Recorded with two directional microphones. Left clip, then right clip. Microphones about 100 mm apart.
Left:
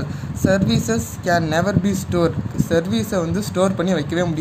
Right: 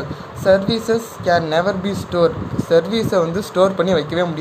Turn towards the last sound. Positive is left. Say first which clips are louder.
# right 3 dB
turn(degrees=40)  # may be behind; listen again after turning